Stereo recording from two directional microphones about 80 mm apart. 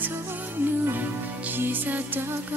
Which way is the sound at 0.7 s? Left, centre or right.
Right.